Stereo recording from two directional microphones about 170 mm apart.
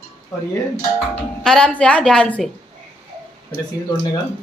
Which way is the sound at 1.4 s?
5° left (ahead or behind).